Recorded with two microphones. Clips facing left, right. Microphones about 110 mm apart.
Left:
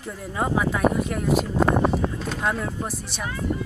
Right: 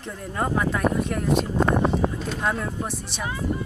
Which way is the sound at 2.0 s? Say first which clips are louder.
Right 2 dB; 10° right (ahead or behind).